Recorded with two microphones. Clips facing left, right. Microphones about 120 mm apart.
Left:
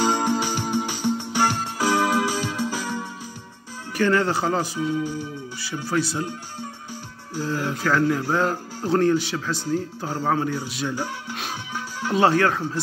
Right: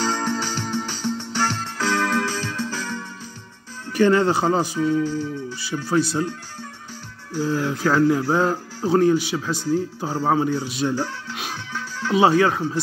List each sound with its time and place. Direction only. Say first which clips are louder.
0.0 s music: left 2 dB; 15° left (ahead or behind)
3.9 s speech: right 4 dB; 20° right (ahead or behind)
4.7 s music: right 4 dB; 15° left (ahead or behind)
5.9 s speech: right 4 dB; 20° right (ahead or behind)
7.5 s music: right 1 dB; 15° left (ahead or behind)
8.3 s speech: right 2 dB; 15° right (ahead or behind)
11.7 s music: right 3 dB; 15° left (ahead or behind)
12.2 s speech: right 2 dB; 15° right (ahead or behind)